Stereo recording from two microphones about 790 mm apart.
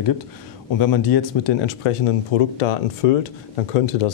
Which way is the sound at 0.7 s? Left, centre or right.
Left.